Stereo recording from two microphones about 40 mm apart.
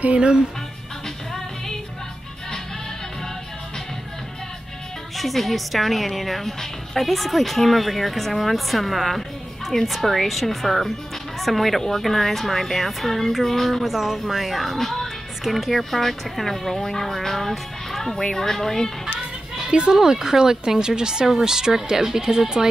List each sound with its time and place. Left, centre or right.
0.2 s speech: right
1.0 s music: centre
5.1 s a woman's voice: centre
13.9 s a woman's voice: centre
19.5 s children playing: centre
20.0 s speech: centre